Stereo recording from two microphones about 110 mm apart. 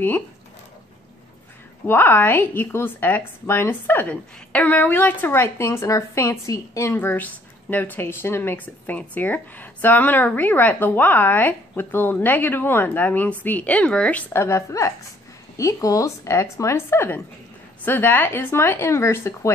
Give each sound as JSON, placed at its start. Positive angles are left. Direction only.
{"t": 1.9, "sound": "a woman's voice", "side_deg": 20}
{"t": 14.3, "sound": "a woman's voice", "side_deg": 25}